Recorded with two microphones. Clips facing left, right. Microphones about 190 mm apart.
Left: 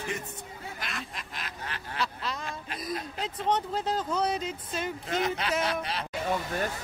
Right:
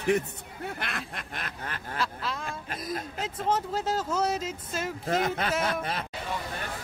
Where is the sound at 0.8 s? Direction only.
60° right (ahead or behind).